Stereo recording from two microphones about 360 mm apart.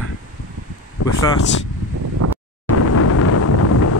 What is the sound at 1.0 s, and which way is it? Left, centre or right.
Speech, left.